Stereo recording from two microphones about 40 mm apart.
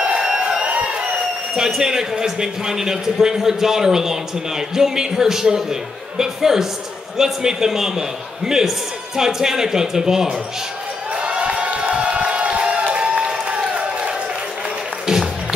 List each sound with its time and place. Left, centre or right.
0.0 s a sound: right
1.5 s a man's voice: centre
11.1 s crowd: right
13.5 s applause: right